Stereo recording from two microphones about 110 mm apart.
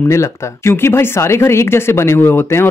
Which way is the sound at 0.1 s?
25° left (ahead or behind).